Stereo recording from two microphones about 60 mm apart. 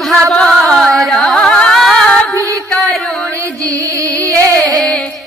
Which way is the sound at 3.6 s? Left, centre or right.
Right.